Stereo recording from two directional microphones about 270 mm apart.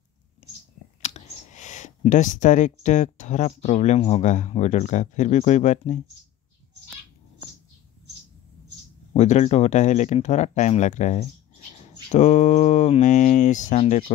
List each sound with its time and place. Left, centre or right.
0.4 s a sound: left
1.0 s speech: left
9.1 s speech: left